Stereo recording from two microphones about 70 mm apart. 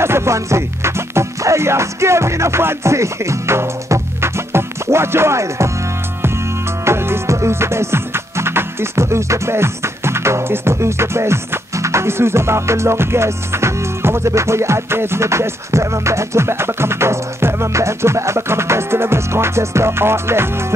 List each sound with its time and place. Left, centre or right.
0.0 s music: right
6.8 s music: right